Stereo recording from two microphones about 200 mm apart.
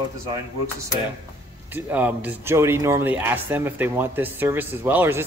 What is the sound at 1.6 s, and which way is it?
A man's voice, 10° right (ahead or behind).